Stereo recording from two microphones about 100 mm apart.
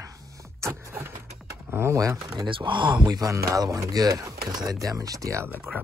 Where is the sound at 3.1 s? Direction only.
35° right (ahead or behind).